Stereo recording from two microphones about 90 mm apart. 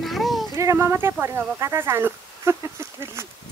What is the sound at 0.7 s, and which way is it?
Speech, 25° right (ahead or behind).